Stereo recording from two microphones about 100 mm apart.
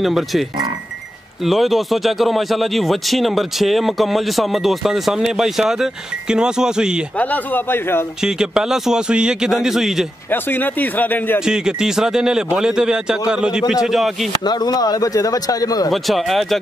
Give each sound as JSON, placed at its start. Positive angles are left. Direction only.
{"t": 0.0, "sound": "speech", "side_deg": 0}
{"t": 7.2, "sound": "speech", "side_deg": 15}
{"t": 8.2, "sound": "speech", "side_deg": -5}
{"t": 10.3, "sound": "speech", "side_deg": 20}
{"t": 11.4, "sound": "a man's voice", "side_deg": -5}
{"t": 14.4, "sound": "speech", "side_deg": 45}
{"t": 15.9, "sound": "speech", "side_deg": 0}